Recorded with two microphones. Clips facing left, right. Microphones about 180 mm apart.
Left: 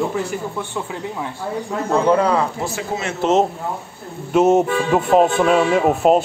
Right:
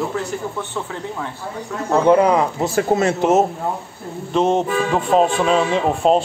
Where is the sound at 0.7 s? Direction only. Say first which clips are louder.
Even; 10° left (ahead or behind).